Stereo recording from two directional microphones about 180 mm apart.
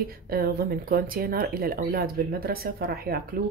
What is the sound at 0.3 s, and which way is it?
Speech, 55° right (ahead or behind).